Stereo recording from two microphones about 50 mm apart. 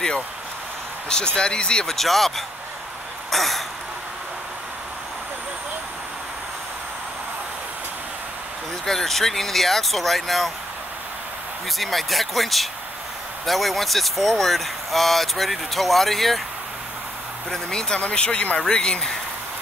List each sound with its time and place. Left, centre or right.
1.0 s speech: centre
1.9 s speech: centre
3.3 s throat clearing: centre
8.8 s speech: centre
11.8 s speech: centre
17.5 s speech: centre